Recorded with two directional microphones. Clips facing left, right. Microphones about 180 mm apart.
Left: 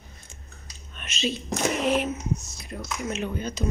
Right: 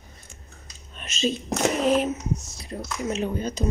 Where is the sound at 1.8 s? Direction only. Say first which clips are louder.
Right 3 dB; 40° right (ahead or behind).